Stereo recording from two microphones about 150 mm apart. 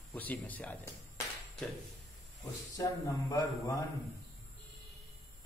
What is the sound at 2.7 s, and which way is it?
Speech, 25° left (ahead or behind).